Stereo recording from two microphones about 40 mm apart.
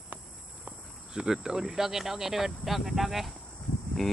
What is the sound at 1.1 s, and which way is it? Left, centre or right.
Speech, centre.